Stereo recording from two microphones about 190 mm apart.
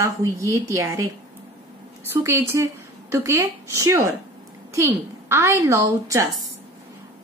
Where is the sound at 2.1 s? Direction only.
15° right (ahead or behind).